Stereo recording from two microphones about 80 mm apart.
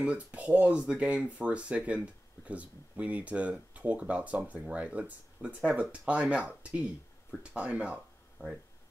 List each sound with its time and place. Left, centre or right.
0.0 s speech: centre